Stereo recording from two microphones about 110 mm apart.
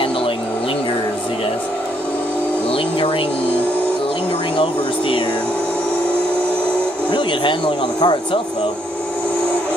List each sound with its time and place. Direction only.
2.7 s music: 55° left (ahead or behind)
7.1 s speech: 50° left (ahead or behind)